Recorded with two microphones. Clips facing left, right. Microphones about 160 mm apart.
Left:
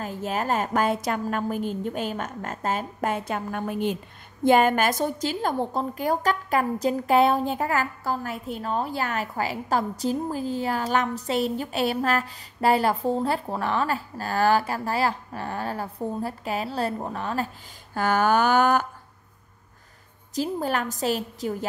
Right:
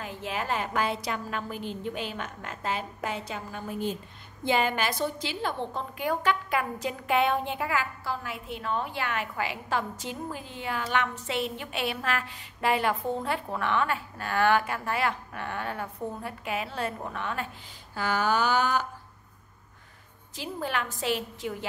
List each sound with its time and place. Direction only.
0.0 s a woman's voice: 40° left (ahead or behind); by 4.0 s 70° left (ahead or behind)
4.5 s a woman's voice: 50° left (ahead or behind)
17.9 s a woman's voice: 50° left (ahead or behind)
20.3 s a woman's voice: 40° left (ahead or behind)